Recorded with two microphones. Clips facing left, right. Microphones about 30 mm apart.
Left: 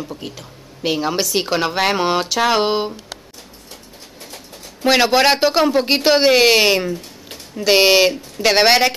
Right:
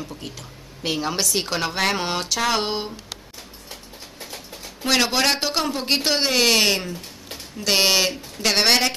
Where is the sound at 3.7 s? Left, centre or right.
Centre.